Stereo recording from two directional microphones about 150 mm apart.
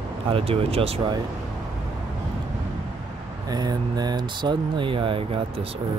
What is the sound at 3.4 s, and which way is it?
Speech, 25° right (ahead or behind).